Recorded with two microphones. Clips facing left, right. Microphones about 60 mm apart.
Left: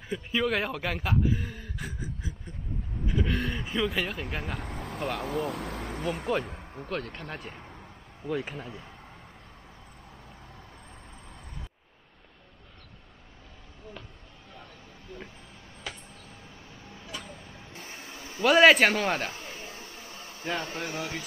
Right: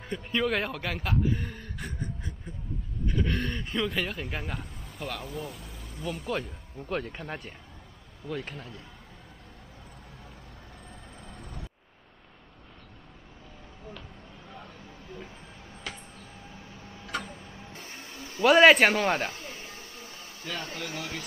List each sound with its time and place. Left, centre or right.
0.1 s speech: centre
4.6 s speech: left
6.9 s speech: centre
17.2 s a sound: centre
18.4 s speech: centre
19.3 s a sound: centre
20.4 s speech: left